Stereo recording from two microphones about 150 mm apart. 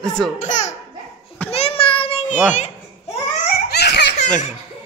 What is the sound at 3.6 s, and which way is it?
Baby laughter, 90° left.